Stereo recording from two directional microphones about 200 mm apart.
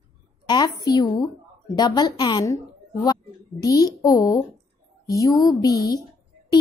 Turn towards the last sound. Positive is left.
turn(degrees=20)  # may be behind; listen again after turning